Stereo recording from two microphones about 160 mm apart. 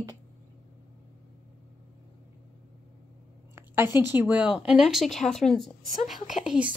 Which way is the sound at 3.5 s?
15° right (ahead or behind).